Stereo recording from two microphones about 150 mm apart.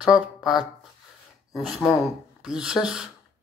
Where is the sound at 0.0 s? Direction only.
5° right (ahead or behind).